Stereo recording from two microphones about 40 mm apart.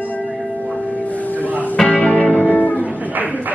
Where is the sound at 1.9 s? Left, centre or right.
Left.